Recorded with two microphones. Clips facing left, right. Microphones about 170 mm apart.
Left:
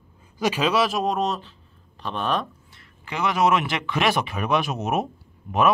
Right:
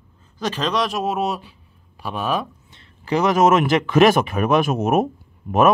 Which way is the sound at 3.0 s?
40° right (ahead or behind).